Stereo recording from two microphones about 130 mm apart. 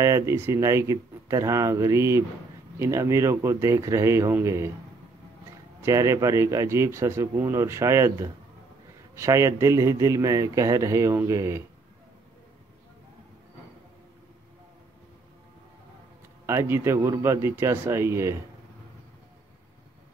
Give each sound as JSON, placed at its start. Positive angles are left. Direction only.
{"t": 0.0, "sound": "speech", "side_deg": -25}
{"t": 5.8, "sound": "speech", "side_deg": -25}
{"t": 16.4, "sound": "speech", "side_deg": -20}